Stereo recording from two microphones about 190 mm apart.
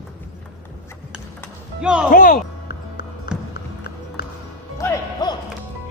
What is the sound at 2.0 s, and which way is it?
Music, 50° left (ahead or behind).